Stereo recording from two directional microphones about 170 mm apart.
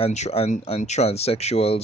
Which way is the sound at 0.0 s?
40° left (ahead or behind).